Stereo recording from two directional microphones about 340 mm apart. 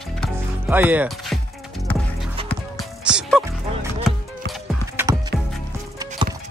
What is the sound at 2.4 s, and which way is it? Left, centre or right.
Music, centre.